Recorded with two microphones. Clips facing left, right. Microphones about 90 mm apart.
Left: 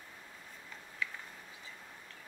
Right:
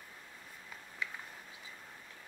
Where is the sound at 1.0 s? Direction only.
20° right (ahead or behind).